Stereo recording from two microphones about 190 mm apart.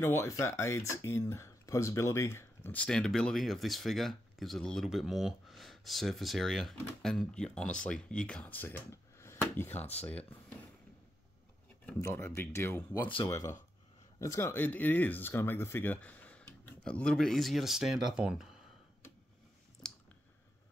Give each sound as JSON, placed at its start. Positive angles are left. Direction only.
{"t": 0.0, "sound": "speech", "side_deg": 15}
{"t": 11.8, "sound": "speech", "side_deg": 10}
{"t": 19.8, "sound": "clicking", "side_deg": 5}